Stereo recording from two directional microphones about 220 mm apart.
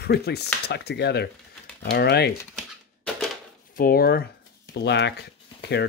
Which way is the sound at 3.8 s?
45° left (ahead or behind).